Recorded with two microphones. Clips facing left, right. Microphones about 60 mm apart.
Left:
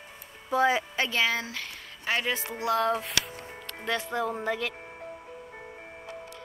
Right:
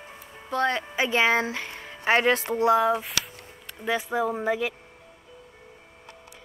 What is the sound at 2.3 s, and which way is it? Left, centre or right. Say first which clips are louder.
Speech: right 8 dB; right.